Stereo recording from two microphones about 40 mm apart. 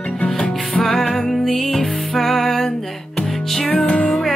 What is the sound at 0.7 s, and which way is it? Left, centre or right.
Music, centre.